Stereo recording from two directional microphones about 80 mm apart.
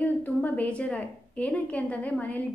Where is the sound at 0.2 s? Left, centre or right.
Left.